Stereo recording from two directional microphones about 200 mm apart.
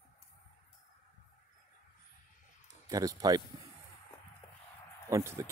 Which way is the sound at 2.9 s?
20° right (ahead or behind).